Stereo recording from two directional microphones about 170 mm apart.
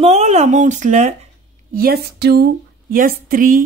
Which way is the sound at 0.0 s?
40° right (ahead or behind).